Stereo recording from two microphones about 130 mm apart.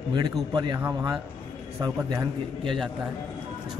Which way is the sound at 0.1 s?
35° right (ahead or behind).